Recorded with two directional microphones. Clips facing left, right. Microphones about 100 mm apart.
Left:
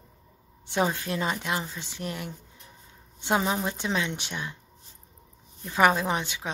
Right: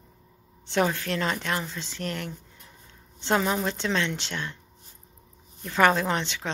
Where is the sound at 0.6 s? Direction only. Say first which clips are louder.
Right 2 dB; 15° left (ahead or behind).